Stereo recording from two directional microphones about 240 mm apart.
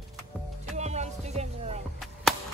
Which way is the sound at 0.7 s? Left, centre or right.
Right.